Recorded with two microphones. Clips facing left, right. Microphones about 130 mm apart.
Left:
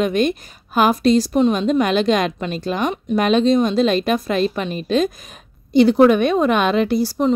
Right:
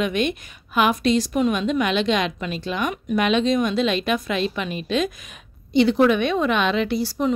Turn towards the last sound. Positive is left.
turn(degrees=40)  # may be behind; listen again after turning